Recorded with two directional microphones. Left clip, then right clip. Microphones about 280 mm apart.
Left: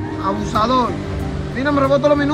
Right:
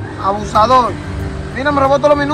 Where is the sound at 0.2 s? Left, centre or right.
Centre.